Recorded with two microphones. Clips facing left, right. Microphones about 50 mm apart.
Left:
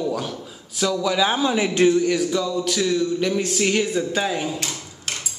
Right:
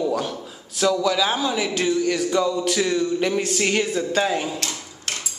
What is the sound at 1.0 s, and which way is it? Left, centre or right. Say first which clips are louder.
A man's voice: left 1 dB; centre.